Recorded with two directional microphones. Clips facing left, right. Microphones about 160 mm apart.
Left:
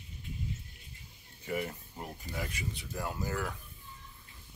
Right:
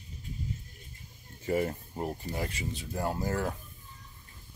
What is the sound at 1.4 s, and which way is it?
Speech, 40° right (ahead or behind).